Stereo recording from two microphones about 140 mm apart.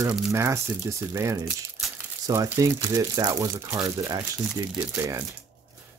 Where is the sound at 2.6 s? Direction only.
25° right (ahead or behind).